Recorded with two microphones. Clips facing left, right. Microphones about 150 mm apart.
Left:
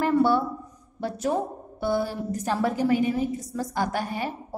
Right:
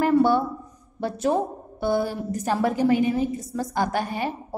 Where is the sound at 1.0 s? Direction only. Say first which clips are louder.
Right 3 dB; 25° right (ahead or behind).